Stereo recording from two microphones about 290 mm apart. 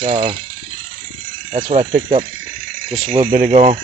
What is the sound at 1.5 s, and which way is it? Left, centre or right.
Speech, centre.